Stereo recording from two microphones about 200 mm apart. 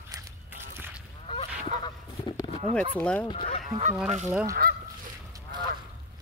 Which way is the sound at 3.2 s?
25° left (ahead or behind).